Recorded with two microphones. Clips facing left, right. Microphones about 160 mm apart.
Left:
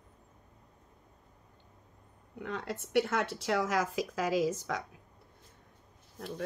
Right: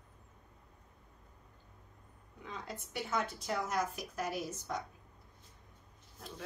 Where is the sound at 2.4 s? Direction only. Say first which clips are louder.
Left 8 dB; 70° left (ahead or behind); by 5.0 s 90° left.